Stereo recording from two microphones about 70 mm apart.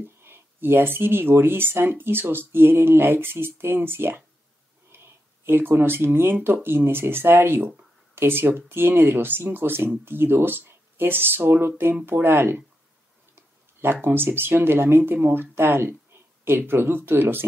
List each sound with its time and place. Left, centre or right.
0.0 s speech: right
14.0 s speech: right